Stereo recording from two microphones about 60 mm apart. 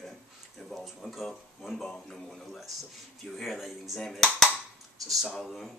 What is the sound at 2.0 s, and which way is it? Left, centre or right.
A man's voice, centre.